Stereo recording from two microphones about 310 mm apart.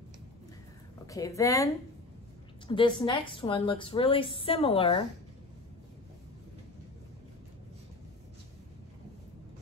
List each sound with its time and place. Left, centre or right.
1.0 s a woman's voice: centre
2.7 s a woman's voice: centre